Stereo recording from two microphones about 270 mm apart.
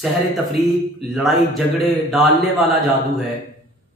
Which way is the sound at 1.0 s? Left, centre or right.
Centre.